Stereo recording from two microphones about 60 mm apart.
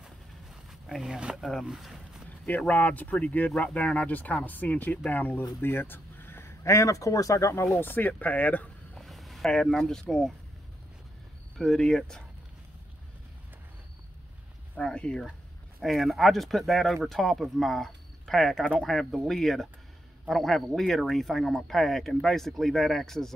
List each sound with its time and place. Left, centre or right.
0.7 s speech: centre
2.2 s a sound: left
2.7 s speech: left
7.8 s speech: left
8.9 s a sound: centre
9.5 s speech: centre
11.5 s speech: centre
14.8 s speech: centre
15.8 s speech: centre